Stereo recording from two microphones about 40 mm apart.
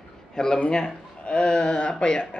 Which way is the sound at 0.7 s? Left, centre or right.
Centre.